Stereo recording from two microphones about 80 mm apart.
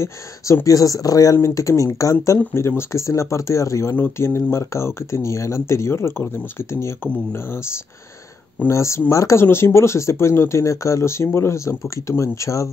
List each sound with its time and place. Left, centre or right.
0.7 s speech: left
8.6 s speech: left